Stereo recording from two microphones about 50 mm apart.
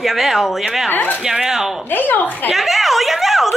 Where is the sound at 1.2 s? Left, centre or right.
Centre.